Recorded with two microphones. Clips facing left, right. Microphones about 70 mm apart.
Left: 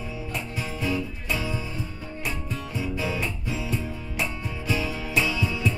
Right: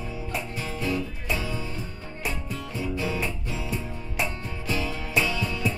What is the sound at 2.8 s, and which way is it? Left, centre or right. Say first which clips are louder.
Music: even; centre.